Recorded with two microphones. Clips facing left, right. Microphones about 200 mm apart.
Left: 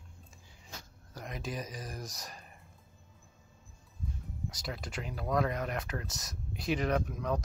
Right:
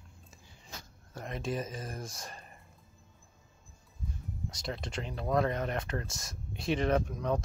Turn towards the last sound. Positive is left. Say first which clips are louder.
# right 2 dB
turn(degrees=0)  # may be behind; listen again after turning